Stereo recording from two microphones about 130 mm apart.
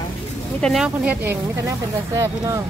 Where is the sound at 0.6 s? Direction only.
5° left (ahead or behind).